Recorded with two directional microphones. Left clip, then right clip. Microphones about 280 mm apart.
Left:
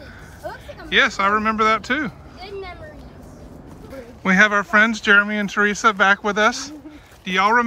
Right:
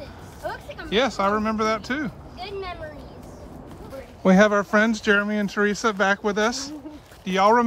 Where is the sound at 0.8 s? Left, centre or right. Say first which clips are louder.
Left 5 dB; centre.